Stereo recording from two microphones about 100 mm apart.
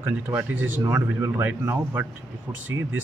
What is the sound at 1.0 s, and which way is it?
Speech, 30° right (ahead or behind).